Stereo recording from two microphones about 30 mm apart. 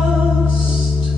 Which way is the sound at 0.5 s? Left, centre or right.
Right.